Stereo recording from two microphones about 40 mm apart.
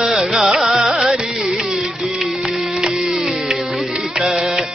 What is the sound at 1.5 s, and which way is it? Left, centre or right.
Carnatic music, centre.